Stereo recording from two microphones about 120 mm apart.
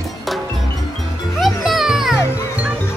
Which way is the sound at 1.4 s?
Centre (ahead or behind).